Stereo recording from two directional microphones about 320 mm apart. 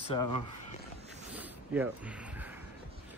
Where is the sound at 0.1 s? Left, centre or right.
Centre.